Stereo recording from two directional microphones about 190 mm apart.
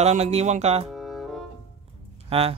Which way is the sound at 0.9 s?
Centre (ahead or behind).